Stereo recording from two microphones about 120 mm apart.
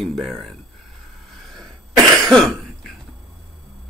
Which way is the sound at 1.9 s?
30° right (ahead or behind).